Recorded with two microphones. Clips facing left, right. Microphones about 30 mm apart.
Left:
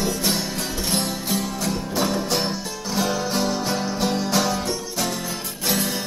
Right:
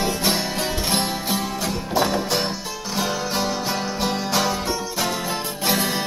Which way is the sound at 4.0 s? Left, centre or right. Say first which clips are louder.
Even; centre.